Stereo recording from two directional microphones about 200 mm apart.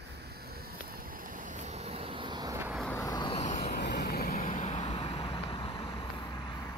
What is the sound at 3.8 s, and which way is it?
Vehicle, 55° left (ahead or behind).